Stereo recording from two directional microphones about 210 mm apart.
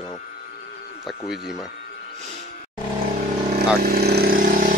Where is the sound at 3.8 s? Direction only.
45° right (ahead or behind).